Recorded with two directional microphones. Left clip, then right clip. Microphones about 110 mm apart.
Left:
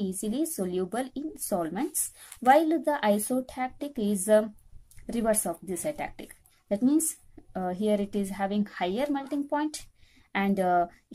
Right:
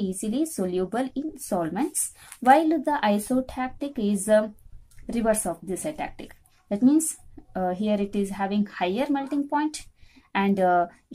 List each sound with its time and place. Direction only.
0.0 s a woman's voice: 30° left (ahead or behind)